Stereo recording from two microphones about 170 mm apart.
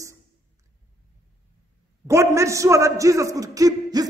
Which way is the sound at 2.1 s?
15° right (ahead or behind).